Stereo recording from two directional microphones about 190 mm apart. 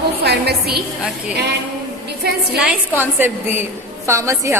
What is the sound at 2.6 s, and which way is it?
A woman's voice, 10° right (ahead or behind).